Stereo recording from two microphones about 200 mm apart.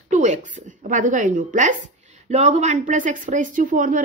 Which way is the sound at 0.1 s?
35° right (ahead or behind).